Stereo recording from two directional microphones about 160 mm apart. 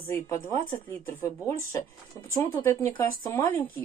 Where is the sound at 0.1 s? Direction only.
20° left (ahead or behind).